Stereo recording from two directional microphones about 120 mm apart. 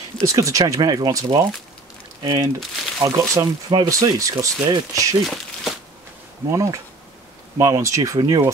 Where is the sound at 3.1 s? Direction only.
25° right (ahead or behind).